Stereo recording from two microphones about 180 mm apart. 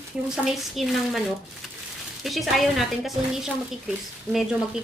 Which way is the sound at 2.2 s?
Centre (ahead or behind).